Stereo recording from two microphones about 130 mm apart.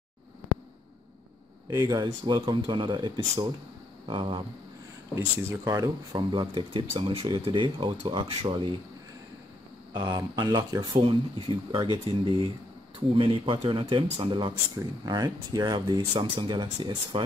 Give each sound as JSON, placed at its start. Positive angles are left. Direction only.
{"t": 1.7, "sound": "speech", "side_deg": -30}
{"t": 5.1, "sound": "speech", "side_deg": -25}
{"t": 9.9, "sound": "speech", "side_deg": -35}